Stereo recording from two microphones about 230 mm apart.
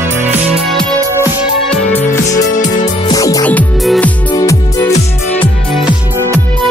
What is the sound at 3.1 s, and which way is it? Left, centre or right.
Music, centre.